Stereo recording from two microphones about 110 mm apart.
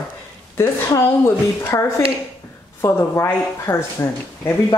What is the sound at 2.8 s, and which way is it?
Speech, 25° left (ahead or behind).